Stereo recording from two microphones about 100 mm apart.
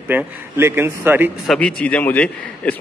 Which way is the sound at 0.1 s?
25° right (ahead or behind).